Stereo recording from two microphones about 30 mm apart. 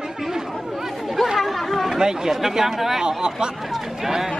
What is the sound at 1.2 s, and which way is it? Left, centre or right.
Chatter, centre.